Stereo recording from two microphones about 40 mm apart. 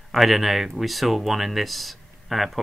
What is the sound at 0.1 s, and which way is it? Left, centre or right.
Speech, centre.